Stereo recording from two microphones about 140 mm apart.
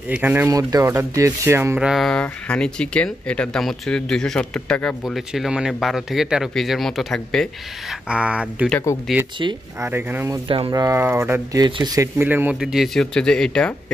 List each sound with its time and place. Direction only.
0.1 s speech: 15° right (ahead or behind)
0.5 s speech: 25° right (ahead or behind)
1.8 s speech: centre (ahead or behind)
8.9 s speech: 20° left (ahead or behind)
9.4 s speech: 30° right (ahead or behind)
9.8 s speech: 15° right (ahead or behind)
11.6 s speech: 30° right (ahead or behind); by 13.9 s 5° left (ahead or behind)